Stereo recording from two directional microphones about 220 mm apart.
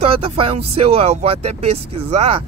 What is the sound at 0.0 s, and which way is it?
Speech, 25° right (ahead or behind).